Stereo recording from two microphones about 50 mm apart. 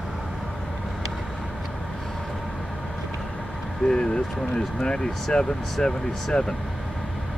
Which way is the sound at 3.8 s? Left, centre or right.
Centre.